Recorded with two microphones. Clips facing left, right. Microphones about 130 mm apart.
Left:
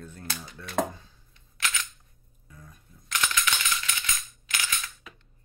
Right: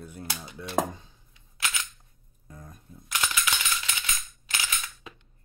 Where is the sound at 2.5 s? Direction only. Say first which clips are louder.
Right 4 dB; 45° right (ahead or behind).